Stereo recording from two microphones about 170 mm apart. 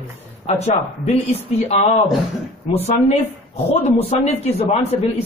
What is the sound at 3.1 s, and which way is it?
Speech, 40° left (ahead or behind).